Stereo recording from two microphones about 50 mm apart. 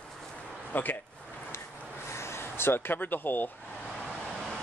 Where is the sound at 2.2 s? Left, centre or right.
Left.